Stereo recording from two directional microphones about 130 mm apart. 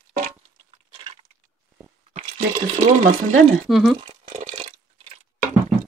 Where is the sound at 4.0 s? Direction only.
45° right (ahead or behind).